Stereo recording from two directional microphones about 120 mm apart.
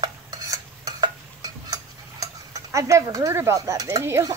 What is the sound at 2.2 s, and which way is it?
Speech, 30° right (ahead or behind).